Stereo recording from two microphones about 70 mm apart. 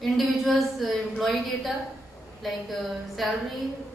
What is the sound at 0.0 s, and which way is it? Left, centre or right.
A woman's voice, centre.